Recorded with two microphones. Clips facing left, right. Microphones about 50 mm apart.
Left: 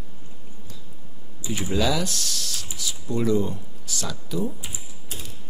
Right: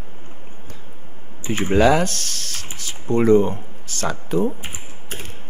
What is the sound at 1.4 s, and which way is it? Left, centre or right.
Speech, right.